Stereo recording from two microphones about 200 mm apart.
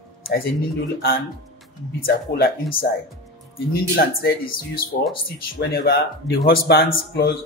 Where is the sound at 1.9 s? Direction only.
45° left (ahead or behind).